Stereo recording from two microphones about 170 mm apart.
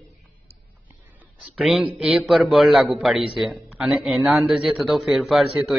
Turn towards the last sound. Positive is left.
turn(degrees=0)  # may be behind; listen again after turning